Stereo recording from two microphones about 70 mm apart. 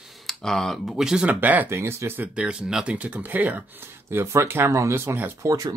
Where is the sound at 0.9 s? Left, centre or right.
Centre.